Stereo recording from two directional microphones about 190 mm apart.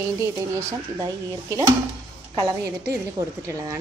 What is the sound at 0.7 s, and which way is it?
Speech, 20° right (ahead or behind).